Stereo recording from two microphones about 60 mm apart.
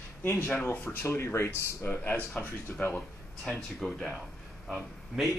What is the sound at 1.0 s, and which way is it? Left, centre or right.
Speech, left.